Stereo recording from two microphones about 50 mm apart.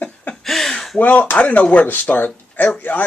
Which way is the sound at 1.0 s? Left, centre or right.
Left.